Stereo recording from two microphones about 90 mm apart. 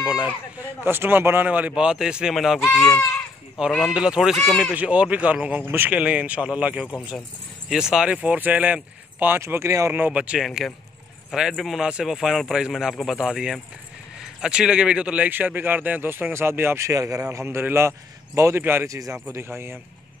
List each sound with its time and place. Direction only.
0.0 s speech: 10° right (ahead or behind)
0.6 s a man's voice: 25° right (ahead or behind); by 2.6 s 5° right (ahead or behind)
3.8 s a man's voice: 10° right (ahead or behind)
9.4 s speech: 30° right (ahead or behind)
9.9 s a man's voice: 15° right (ahead or behind)
10.4 s a man's voice: centre (ahead or behind); by 18.9 s 25° right (ahead or behind)
18.9 s speech: 40° right (ahead or behind)